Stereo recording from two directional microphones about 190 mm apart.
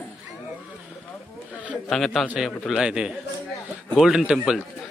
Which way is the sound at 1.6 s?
5° right (ahead or behind).